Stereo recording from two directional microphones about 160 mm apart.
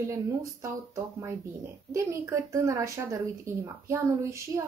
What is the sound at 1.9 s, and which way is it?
Speech, 20° right (ahead or behind).